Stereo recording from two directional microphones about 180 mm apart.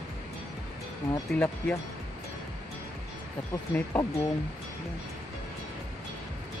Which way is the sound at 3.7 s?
20° left (ahead or behind).